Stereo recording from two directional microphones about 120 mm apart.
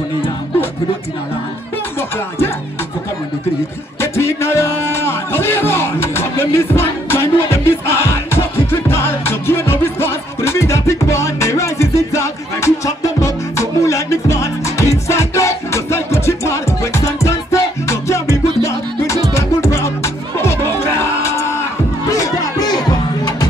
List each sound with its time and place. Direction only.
2.0 s music: 20° left (ahead or behind)
4.0 s music: 20° left (ahead or behind)